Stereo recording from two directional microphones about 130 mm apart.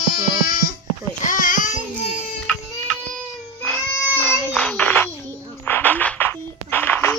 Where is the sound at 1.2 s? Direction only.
85° left.